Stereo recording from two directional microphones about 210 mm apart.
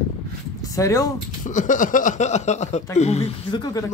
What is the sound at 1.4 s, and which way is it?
Speech, 40° left (ahead or behind).